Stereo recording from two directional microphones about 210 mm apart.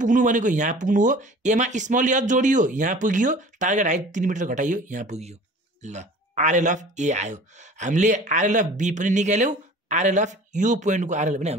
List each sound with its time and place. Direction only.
0.0 s speech: 35° right (ahead or behind)